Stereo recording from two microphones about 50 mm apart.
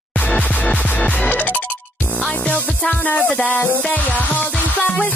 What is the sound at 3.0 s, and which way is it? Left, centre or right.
Music, left.